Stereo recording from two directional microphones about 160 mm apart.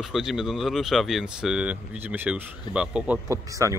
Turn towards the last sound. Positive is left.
turn(degrees=-20)  # may be behind; listen again after turning